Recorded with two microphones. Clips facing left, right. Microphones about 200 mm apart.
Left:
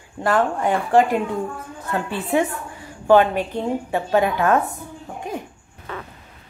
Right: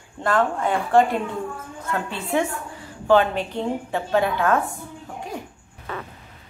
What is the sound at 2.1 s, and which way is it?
A woman's voice, 15° left (ahead or behind).